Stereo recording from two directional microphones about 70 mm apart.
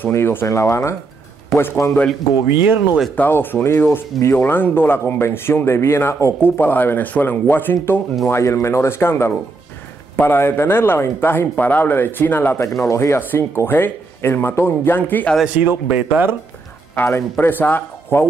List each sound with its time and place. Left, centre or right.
0.1 s speech: left
1.5 s a man's voice: left
2.4 s speech: right
3.2 s speech: left
8.3 s speech: left
12.8 s speech: left
15.4 s speech: right
16.9 s speech: left